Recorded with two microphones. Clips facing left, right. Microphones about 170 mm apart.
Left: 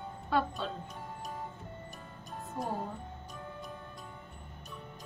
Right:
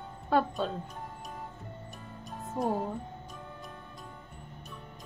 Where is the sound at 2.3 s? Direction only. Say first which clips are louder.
Right 6 dB; centre (ahead or behind).